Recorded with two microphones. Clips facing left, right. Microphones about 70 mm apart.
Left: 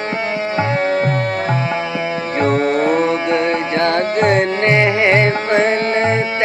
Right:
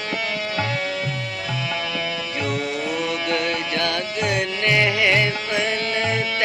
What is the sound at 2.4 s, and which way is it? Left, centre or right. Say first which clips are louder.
Music: left 12 dB; left.